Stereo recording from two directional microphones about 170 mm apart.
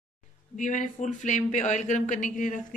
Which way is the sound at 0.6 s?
50° left (ahead or behind).